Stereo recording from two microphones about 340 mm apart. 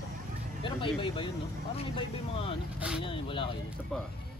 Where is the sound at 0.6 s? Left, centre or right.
Centre.